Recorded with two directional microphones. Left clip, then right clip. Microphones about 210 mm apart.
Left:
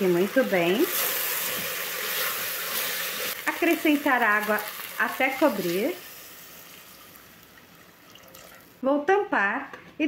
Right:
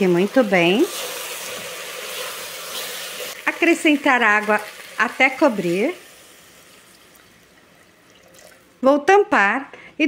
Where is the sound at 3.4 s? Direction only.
50° right (ahead or behind).